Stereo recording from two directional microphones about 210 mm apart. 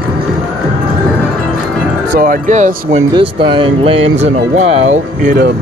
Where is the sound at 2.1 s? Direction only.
40° right (ahead or behind).